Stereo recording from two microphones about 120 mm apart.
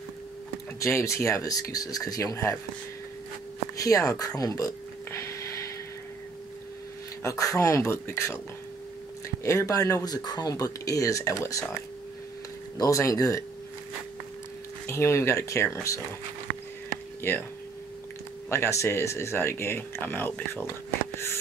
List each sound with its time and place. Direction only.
0.7 s speech: 25° left (ahead or behind)
3.7 s a sound: 30° left (ahead or behind)
7.2 s speech: 30° left (ahead or behind)
9.4 s speech: 25° left (ahead or behind)
12.7 s speech: 30° left (ahead or behind)
14.9 s speech: 25° left (ahead or behind)
17.2 s speech: 20° left (ahead or behind)
18.5 s speech: 25° left (ahead or behind)